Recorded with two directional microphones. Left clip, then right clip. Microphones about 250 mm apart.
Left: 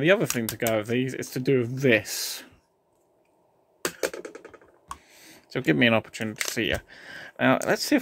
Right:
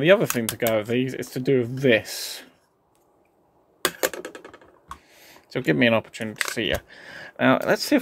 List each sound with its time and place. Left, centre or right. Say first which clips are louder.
0.0 s speech: right 4 dB; centre
4.0 s music: right 4 dB; right
5.5 s speech: right 2 dB; centre